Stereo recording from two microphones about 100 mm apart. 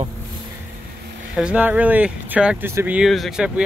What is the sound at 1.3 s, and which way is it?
Speech, 10° right (ahead or behind).